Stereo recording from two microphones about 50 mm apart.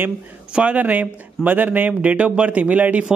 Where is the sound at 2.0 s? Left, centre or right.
Right.